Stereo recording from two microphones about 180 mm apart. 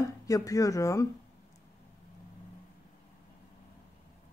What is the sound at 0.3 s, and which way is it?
Speech, 20° left (ahead or behind).